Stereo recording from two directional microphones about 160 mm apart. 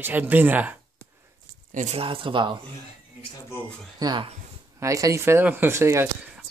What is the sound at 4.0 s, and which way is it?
Speech, 25° right (ahead or behind).